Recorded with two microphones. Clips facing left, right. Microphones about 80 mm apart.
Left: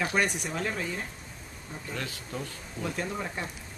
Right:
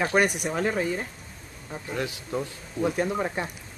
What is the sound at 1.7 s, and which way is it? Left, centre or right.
Speech, centre.